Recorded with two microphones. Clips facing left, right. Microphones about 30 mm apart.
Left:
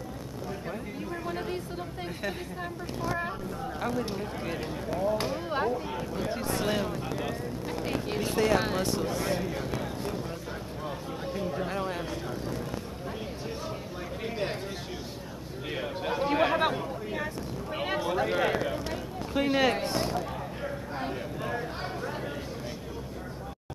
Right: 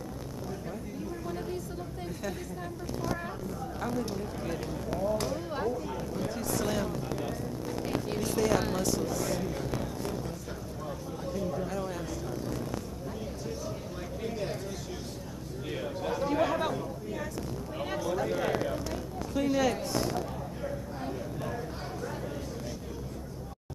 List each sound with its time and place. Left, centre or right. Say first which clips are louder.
1.2 s a sound: left 3 dB; left
3.8 s speech: left 2 dB; left
11.2 s speech: left 1 dB; left
14.2 s speech: left 2 dB; left
15.7 s speech: left 2 dB; left
20.6 s a sound: left 2 dB; left